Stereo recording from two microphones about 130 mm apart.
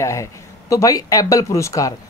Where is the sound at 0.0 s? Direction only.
25° left (ahead or behind).